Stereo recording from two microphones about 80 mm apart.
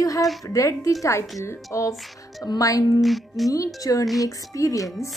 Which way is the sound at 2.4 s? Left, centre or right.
Left.